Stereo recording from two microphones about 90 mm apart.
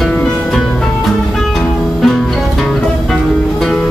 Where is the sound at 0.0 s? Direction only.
5° left (ahead or behind).